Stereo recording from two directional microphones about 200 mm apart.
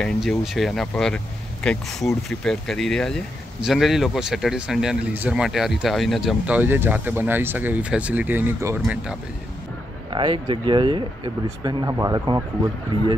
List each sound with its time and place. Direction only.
0.0 s speech: centre (ahead or behind)
10.1 s speech: 25° right (ahead or behind)